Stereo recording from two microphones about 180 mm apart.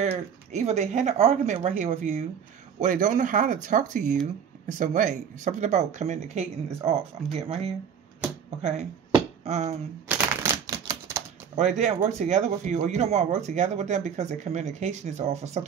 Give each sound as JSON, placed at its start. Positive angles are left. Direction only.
{"t": 0.0, "sound": "speech", "side_deg": -40}
{"t": 9.1, "sound": "a sound", "side_deg": -35}
{"t": 10.0, "sound": "typewriter", "side_deg": -15}
{"t": 11.5, "sound": "speech", "side_deg": -40}